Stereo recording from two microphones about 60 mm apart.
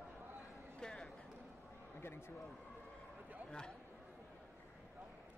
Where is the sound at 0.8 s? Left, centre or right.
Centre.